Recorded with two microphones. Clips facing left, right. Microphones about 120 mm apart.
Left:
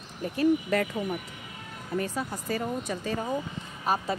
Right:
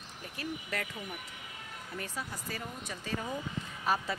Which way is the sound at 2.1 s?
50° left (ahead or behind).